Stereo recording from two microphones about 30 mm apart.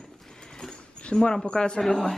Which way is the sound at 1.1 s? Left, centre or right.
Left.